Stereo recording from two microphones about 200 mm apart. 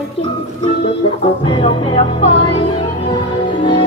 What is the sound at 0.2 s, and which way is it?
Music, 30° left (ahead or behind).